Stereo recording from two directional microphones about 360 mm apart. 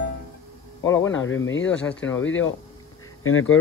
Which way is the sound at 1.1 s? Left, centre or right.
Left.